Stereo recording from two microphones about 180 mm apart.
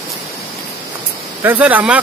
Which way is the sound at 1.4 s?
10° right (ahead or behind).